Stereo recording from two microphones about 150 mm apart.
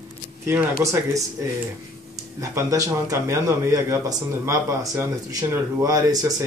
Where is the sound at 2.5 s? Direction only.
20° right (ahead or behind).